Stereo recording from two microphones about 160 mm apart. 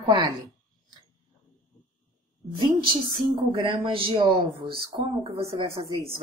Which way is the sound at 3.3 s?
30° right (ahead or behind).